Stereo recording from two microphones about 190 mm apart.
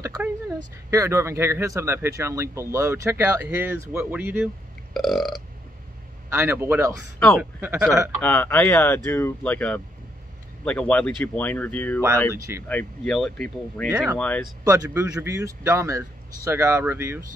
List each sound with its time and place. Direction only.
0.6 s speech: 15° right (ahead or behind); by 5.3 s centre (ahead or behind)
6.3 s speech: 15° right (ahead or behind)
7.2 s speech: 5° left (ahead or behind)
7.6 s speech: 15° right (ahead or behind)
8.2 s speech: 10° left (ahead or behind)
12.4 s speech: 15° right (ahead or behind)
12.6 s speech: 5° left (ahead or behind)
14.6 s speech: 20° right (ahead or behind)